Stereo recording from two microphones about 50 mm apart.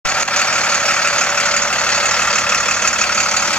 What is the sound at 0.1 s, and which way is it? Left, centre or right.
Vehicle, left.